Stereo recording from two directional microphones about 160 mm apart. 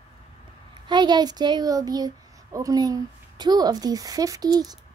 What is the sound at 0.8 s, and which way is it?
A woman's voice, 25° right (ahead or behind).